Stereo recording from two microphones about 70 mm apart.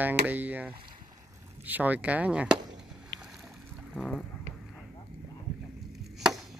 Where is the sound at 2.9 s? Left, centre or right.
Centre.